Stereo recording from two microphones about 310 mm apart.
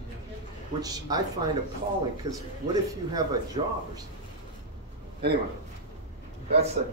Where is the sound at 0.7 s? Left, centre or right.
Centre.